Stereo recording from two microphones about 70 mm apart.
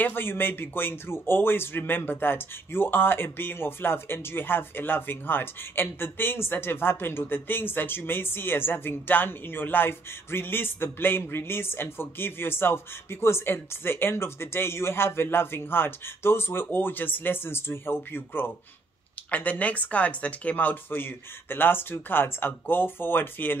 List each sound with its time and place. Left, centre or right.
0.0 s speech: left